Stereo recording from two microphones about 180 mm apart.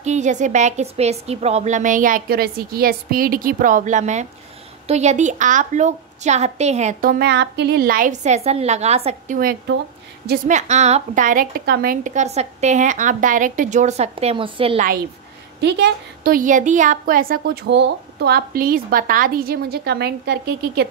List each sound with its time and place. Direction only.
0.0 s a woman's voice: 40° right (ahead or behind)
9.4 s a woman's voice: 55° right (ahead or behind); by 14.8 s 30° right (ahead or behind)
15.6 s a woman's voice: 60° right (ahead or behind)